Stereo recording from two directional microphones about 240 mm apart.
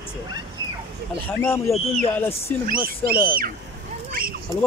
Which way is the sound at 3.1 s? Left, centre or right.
Right.